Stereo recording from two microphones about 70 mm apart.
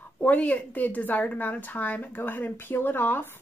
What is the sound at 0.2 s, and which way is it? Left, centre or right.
Speech, left.